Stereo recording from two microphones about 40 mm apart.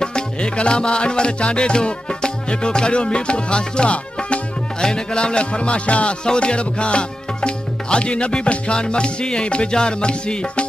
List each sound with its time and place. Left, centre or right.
0.0 s music: left